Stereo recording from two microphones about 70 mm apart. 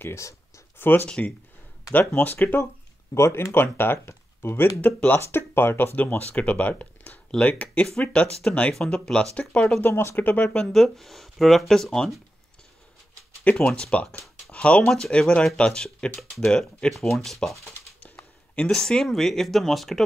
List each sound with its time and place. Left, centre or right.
0.0 s speech: left
0.7 s speech: left
1.0 s speech: centre
3.2 s speech: left
5.9 s speech: left
9.8 s speech: left
10.6 s speech: centre
13.4 s a sound: centre
13.7 s speech: centre
14.5 s a sound: centre
14.9 s speech: centre
18.0 s a sound: centre
18.7 s speech: centre